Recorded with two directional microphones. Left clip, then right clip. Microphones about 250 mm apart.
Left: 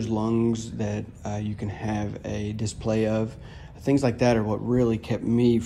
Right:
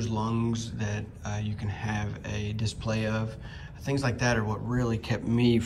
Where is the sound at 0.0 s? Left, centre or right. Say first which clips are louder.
Left 6 dB; left.